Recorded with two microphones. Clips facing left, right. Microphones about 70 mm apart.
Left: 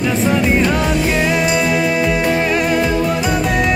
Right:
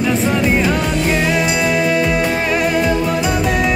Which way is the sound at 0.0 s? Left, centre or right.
Centre.